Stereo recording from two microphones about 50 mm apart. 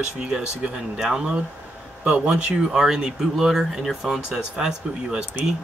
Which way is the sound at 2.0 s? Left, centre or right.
Right.